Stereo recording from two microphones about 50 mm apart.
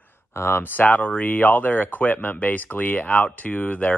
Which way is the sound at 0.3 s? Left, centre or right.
Left.